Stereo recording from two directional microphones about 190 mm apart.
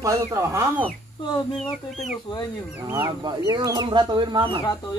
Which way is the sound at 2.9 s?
15° right (ahead or behind).